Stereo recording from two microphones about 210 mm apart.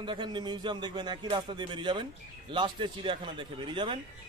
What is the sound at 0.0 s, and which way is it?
A man's voice, 20° right (ahead or behind).